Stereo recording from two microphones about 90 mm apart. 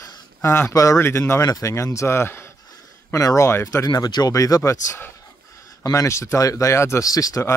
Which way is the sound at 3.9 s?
50° left (ahead or behind).